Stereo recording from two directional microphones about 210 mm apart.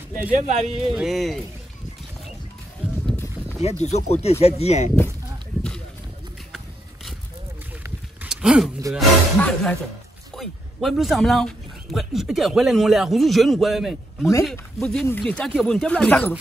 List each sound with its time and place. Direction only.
0.4 s speech: 35° right (ahead or behind)
0.9 s speech: centre (ahead or behind)
3.1 s a sound: 10° left (ahead or behind)
3.8 s speech: 30° left (ahead or behind)
7.8 s a sound: 5° right (ahead or behind)
8.9 s speech: 5° left (ahead or behind)